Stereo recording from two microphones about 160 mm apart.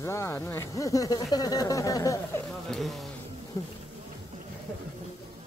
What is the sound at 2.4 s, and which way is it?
Speech, centre (ahead or behind).